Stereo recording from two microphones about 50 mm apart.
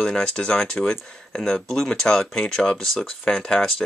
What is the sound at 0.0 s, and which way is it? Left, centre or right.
Speech, centre.